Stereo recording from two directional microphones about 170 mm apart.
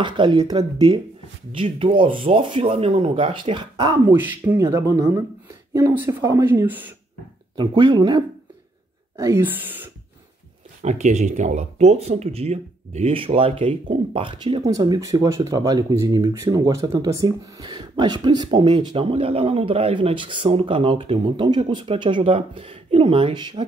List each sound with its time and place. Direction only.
0.0 s speech: 30° right (ahead or behind)
4.2 s speech: 10° right (ahead or behind)
7.5 s speech: 25° right (ahead or behind); by 9.8 s 10° right (ahead or behind)
10.8 s speech: 45° right (ahead or behind); by 23.6 s 30° right (ahead or behind)